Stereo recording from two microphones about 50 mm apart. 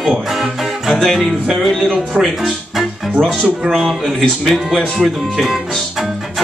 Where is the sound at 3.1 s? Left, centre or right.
Right.